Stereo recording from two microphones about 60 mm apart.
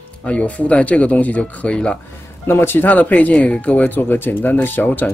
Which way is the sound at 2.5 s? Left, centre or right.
Left.